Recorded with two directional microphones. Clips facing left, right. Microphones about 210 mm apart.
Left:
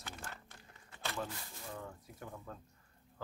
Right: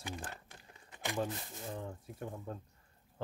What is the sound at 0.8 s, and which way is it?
Speech, 15° right (ahead or behind).